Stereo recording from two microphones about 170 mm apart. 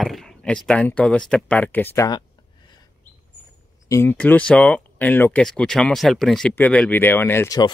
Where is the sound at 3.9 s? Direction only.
15° left (ahead or behind).